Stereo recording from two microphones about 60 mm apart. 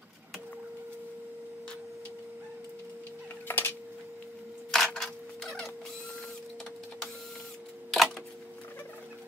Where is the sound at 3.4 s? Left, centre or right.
Left.